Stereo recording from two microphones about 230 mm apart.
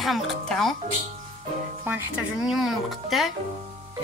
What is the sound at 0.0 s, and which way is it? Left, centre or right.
Speech, centre.